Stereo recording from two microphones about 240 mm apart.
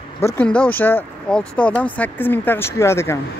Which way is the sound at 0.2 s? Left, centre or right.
Centre.